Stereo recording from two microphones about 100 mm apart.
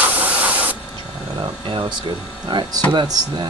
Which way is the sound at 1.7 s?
50° right (ahead or behind).